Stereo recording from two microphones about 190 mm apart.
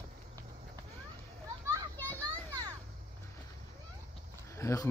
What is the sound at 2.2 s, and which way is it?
Children playing, 20° right (ahead or behind).